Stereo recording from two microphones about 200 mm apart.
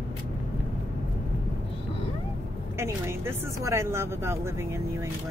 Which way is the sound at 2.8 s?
15° right (ahead or behind).